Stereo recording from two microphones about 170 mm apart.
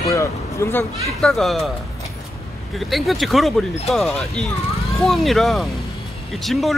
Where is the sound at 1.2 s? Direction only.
Centre (ahead or behind).